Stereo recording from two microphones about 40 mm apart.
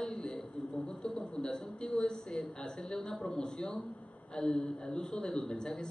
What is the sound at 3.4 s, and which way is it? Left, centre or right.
Speech, centre.